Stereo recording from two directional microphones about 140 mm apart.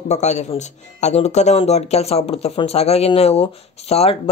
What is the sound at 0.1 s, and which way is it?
Speech, 55° left (ahead or behind).